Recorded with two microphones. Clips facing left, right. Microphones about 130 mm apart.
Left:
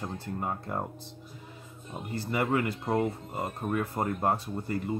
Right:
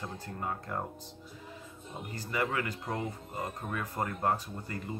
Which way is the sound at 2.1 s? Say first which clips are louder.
Left 5 dB; 25° left (ahead or behind).